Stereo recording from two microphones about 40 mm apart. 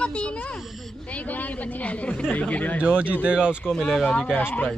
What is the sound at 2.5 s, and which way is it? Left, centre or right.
Speech, left.